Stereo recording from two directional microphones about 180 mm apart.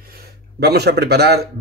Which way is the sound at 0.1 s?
60° right (ahead or behind).